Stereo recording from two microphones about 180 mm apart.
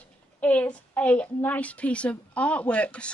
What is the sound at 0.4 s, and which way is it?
A woman's voice, 5° left (ahead or behind).